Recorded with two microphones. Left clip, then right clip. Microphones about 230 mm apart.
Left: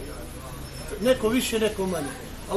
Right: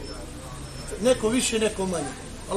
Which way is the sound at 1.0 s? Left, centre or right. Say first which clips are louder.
Even; centre.